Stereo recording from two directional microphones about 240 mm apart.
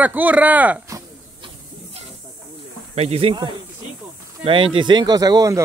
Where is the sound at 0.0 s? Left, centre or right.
Centre.